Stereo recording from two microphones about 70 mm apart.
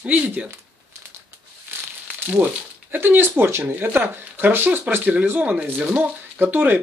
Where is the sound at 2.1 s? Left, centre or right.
Right.